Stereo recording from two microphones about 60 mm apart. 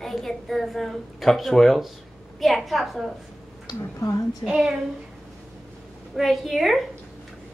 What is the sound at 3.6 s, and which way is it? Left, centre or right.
Speech, left.